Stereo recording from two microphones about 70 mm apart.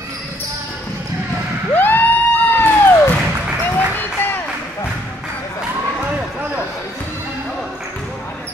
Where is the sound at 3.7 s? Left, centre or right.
Left.